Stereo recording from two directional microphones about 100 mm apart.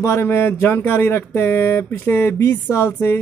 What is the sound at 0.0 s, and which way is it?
Speech, 25° left (ahead or behind).